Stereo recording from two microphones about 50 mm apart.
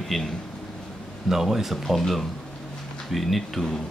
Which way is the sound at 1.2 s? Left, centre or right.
Centre.